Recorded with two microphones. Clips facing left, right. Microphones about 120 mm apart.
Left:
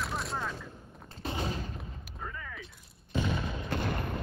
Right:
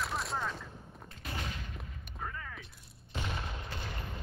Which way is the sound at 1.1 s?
30° left (ahead or behind).